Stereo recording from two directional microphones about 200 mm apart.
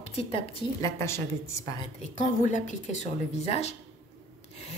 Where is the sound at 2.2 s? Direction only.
40° left (ahead or behind).